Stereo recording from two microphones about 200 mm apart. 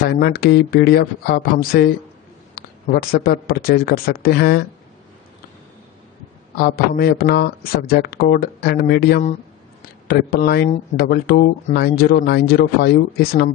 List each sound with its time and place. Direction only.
0.0 s speech: 50° left (ahead or behind)
6.5 s speech: 50° left (ahead or behind)